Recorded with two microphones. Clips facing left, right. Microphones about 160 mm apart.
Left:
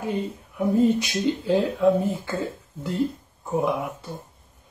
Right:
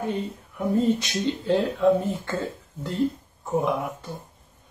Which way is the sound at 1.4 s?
5° left (ahead or behind).